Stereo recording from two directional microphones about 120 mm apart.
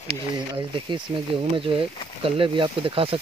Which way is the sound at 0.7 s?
40° right (ahead or behind).